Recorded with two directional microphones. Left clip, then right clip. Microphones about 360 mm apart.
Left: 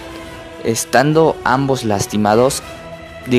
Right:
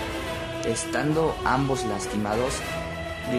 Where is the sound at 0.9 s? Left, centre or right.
Left.